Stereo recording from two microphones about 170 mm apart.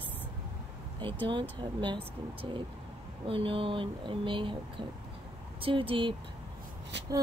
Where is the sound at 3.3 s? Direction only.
30° right (ahead or behind).